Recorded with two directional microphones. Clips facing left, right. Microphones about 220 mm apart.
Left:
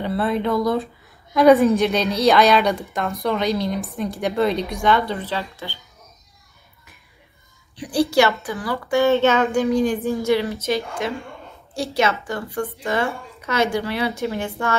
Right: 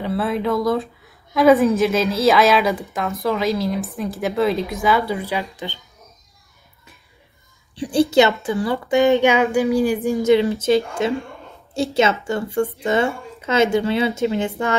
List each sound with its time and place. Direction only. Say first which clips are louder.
0.0 s a woman's voice: even; centre (ahead or behind)
7.7 s a child's voice: right 3 dB; 30° right (ahead or behind)
10.4 s a woman's voice: right 6 dB; 30° right (ahead or behind)